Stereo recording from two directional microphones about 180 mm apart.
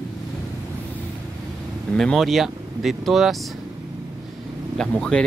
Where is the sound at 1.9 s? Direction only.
Centre (ahead or behind).